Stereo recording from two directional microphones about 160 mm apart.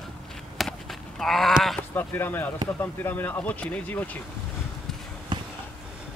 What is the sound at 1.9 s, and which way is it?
Speech, 15° left (ahead or behind).